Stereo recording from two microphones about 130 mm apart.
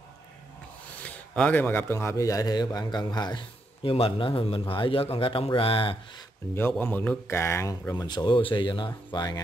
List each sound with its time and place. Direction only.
1.0 s a man's voice: 10° left (ahead or behind); by 3.4 s 35° left (ahead or behind)
3.8 s a man's voice: 45° left (ahead or behind)
6.8 s a man's voice: 15° left (ahead or behind)
7.9 s speech: 35° left (ahead or behind)